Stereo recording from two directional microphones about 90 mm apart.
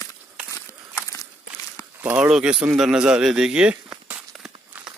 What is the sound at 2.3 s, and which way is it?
Speech, 10° right (ahead or behind).